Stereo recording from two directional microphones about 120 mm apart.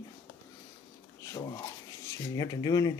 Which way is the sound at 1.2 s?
30° left (ahead or behind).